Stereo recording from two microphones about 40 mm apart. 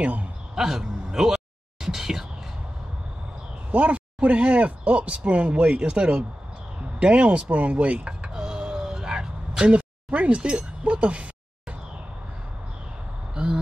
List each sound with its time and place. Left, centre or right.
0.0 s speech: right
0.6 s speech: centre
1.8 s a sound: centre
3.7 s speech: right
7.0 s a sound: right
13.3 s speech: right